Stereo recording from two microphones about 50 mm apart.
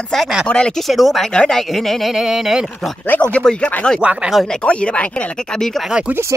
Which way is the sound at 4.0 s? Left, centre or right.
Right.